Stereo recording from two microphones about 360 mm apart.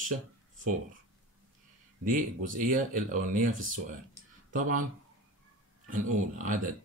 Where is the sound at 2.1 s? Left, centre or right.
Right.